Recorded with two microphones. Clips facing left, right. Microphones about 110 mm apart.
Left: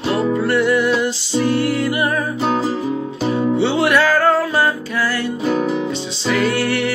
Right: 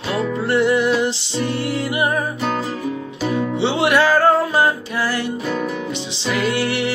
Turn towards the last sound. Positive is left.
turn(degrees=-20)  # may be behind; listen again after turning